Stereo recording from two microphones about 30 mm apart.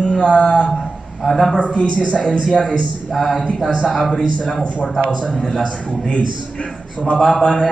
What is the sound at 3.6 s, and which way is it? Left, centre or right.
Speech, left.